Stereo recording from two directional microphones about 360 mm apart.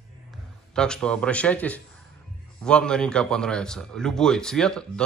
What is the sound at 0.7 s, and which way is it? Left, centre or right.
Speech, centre.